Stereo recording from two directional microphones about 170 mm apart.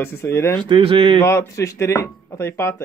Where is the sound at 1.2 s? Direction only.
15° left (ahead or behind).